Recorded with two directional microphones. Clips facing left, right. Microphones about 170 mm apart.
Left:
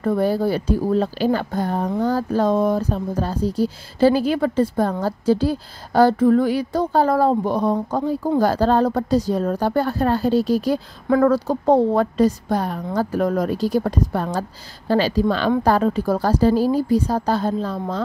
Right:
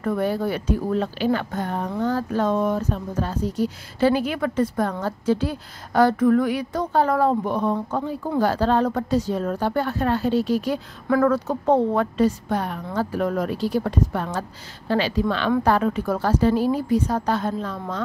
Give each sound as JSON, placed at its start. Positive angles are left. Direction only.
{"t": 0.0, "sound": "speech", "side_deg": 35}